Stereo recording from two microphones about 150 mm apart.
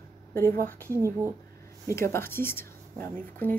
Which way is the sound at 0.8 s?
20° right (ahead or behind).